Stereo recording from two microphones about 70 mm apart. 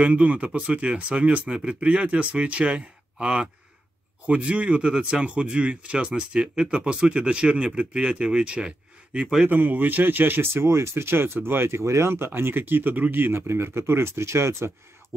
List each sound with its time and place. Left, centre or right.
0.0 s speech: centre; by 14.7 s right